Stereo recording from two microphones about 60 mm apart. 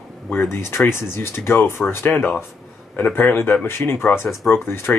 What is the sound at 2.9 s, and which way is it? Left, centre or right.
Speech, left.